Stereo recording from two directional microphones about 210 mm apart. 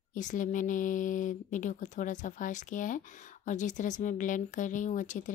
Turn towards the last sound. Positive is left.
turn(degrees=35)  # may be behind; listen again after turning